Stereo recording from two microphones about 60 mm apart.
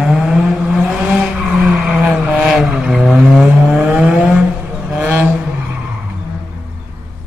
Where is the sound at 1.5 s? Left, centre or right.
Centre.